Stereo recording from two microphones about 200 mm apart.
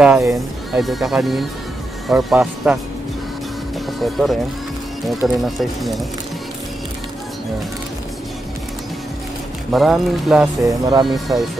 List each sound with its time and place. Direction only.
0.0 s speech: 5° right (ahead or behind)
4.0 s speech: centre (ahead or behind)
5.4 s speech: centre (ahead or behind)
9.7 s speech: centre (ahead or behind)
10.6 s speech: 20° right (ahead or behind)
11.1 s speech: centre (ahead or behind)